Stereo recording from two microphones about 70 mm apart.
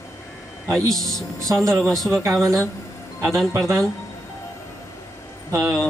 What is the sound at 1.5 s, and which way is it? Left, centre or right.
Speech, right.